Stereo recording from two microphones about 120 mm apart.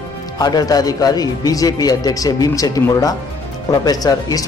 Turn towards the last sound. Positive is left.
turn(degrees=30)  # may be behind; listen again after turning